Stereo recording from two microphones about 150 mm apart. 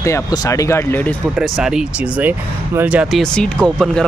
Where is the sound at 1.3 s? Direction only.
5° right (ahead or behind).